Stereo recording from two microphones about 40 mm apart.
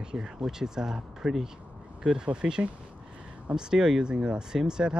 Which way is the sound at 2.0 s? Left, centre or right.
Right.